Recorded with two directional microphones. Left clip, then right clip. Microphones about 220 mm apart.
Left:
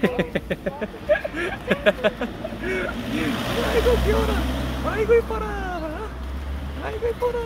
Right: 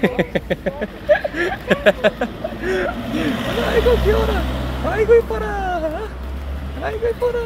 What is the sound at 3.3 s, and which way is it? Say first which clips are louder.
Speech: right 4 dB; 40° left (ahead or behind).